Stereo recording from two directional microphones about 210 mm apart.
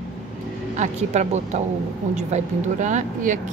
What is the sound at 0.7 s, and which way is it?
Speech, 35° right (ahead or behind).